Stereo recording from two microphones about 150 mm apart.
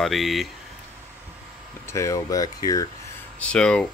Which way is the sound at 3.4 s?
5° left (ahead or behind).